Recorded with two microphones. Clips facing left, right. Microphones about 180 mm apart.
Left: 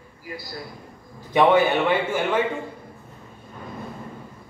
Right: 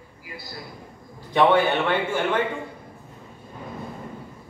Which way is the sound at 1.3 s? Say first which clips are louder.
Left 1 dB; 10° left (ahead or behind).